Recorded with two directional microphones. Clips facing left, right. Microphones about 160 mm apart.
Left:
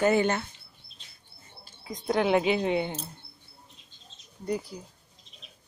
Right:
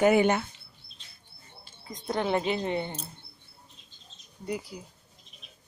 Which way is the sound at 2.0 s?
5° left (ahead or behind).